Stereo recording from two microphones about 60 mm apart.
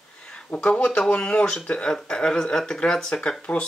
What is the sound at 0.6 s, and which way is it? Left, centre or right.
Speech, centre.